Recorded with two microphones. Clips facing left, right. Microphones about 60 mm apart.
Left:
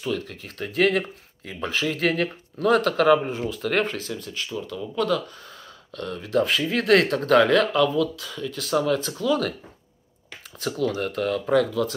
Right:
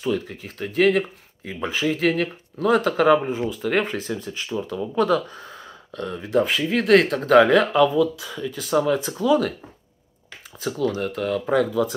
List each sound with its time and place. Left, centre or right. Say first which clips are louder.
0.0 s speech: right 3 dB; centre
0.6 s speech: right 3 dB; centre
1.5 s speech: right 2 dB; centre
4.0 s speech: right 3 dB; right
6.4 s speech: right 1 dB; centre
10.6 s speech: right 1 dB; centre